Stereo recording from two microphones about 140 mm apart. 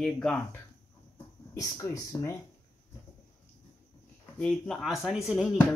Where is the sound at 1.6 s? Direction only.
25° left (ahead or behind).